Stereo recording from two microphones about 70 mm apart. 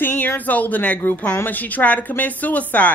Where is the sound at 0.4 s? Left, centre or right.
Left.